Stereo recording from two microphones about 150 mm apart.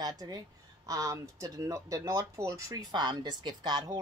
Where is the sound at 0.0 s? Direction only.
25° right (ahead or behind).